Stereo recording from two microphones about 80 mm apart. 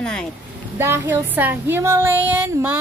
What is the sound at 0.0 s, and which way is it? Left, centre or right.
Speech, centre.